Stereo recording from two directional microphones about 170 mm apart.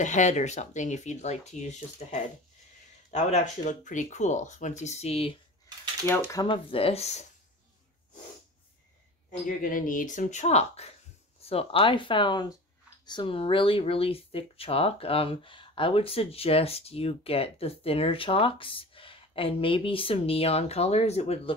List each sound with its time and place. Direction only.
0.0 s speech: 45° left (ahead or behind)
6.0 s speech: 15° left (ahead or behind)
6.4 s speech: 30° left (ahead or behind)
9.6 s speech: 55° left (ahead or behind); by 21.5 s 35° left (ahead or behind)